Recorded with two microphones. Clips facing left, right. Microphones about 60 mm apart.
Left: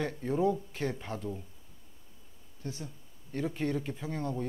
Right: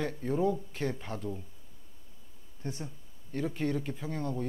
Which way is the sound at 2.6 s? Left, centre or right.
Right.